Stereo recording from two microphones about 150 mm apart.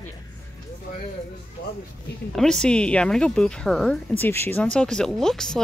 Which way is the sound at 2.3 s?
5° left (ahead or behind).